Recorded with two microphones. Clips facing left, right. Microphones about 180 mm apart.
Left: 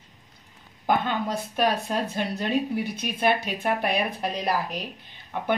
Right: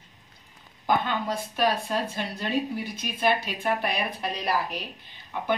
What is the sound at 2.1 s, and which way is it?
Speech, 50° left (ahead or behind).